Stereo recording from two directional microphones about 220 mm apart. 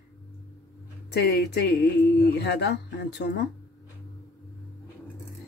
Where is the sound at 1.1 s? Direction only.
50° left (ahead or behind).